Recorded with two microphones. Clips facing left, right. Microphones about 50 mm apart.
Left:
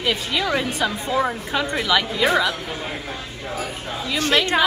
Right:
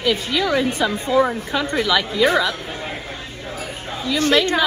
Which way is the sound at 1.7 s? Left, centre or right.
Left.